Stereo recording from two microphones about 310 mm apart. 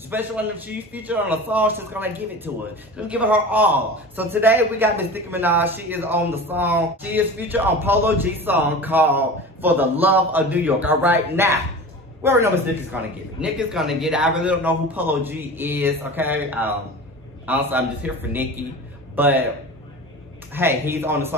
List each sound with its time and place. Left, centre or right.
0.1 s a man's voice: centre
20.5 s a man's voice: centre